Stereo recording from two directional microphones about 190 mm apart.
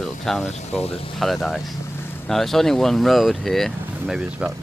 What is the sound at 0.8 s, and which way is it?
Speech, 30° left (ahead or behind).